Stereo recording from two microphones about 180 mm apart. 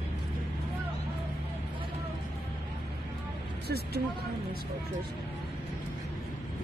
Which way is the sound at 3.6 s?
60° right (ahead or behind).